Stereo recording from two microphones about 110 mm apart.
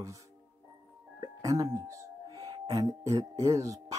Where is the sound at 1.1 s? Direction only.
35° right (ahead or behind).